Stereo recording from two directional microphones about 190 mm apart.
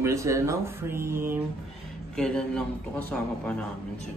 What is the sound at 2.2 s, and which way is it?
A man's voice, 5° left (ahead or behind).